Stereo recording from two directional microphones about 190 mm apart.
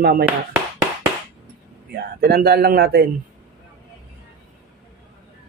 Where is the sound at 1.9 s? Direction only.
55° right (ahead or behind).